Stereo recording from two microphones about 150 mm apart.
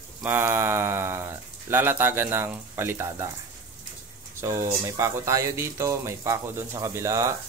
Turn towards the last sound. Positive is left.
turn(degrees=-20)  # may be behind; listen again after turning